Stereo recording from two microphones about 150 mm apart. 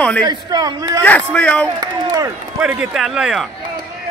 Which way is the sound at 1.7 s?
25° right (ahead or behind).